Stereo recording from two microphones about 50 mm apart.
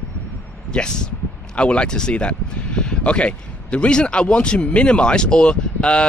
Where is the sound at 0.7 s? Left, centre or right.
Centre.